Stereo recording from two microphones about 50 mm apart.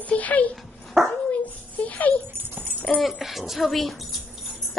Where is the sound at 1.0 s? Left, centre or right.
Centre.